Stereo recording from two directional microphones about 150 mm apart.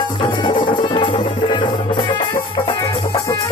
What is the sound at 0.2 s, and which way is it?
Music, 30° left (ahead or behind).